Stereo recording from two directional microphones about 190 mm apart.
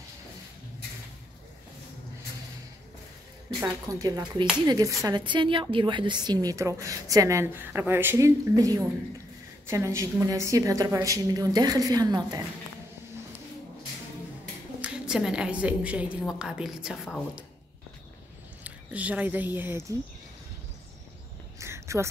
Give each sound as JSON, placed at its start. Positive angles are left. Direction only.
{"t": 3.6, "sound": "speech", "side_deg": -15}
{"t": 14.8, "sound": "a woman's voice", "side_deg": -5}
{"t": 18.6, "sound": "speech", "side_deg": -5}
{"t": 21.5, "sound": "a sound", "side_deg": -15}